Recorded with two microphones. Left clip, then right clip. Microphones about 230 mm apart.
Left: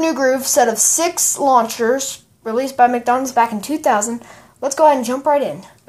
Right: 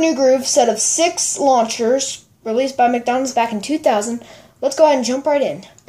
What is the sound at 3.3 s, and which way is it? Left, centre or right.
A woman's voice, left.